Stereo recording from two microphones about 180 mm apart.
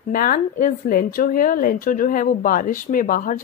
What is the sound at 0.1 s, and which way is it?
A woman's voice, 50° left (ahead or behind).